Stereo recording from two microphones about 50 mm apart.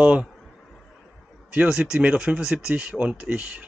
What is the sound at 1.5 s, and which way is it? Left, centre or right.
Speech, centre.